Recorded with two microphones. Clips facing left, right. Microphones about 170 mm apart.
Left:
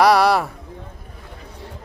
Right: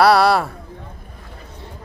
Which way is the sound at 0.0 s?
15° left (ahead or behind).